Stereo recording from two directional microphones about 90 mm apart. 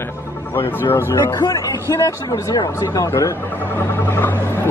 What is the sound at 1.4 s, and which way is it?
Speech, 40° left (ahead or behind).